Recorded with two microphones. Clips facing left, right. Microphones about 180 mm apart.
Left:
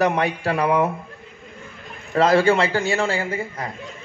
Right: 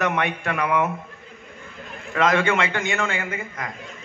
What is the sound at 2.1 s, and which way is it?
Speech, 35° left (ahead or behind).